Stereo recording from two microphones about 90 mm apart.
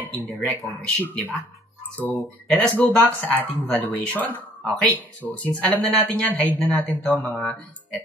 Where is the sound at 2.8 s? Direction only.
15° left (ahead or behind).